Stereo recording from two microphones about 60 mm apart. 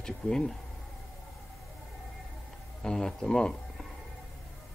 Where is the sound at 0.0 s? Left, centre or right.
Centre.